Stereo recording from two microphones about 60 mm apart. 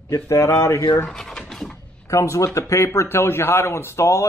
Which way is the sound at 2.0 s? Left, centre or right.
Left.